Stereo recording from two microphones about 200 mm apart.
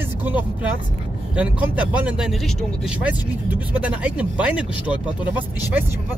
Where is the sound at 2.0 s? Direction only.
5° right (ahead or behind).